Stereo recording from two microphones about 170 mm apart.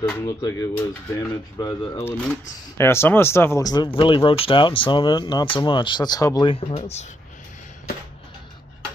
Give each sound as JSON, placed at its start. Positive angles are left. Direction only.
{"t": 0.1, "sound": "speech", "side_deg": 20}